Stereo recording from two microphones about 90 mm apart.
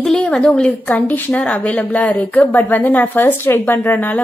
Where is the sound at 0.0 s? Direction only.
5° left (ahead or behind).